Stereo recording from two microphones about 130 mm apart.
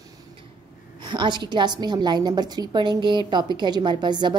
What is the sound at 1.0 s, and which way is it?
A woman's voice, 35° right (ahead or behind).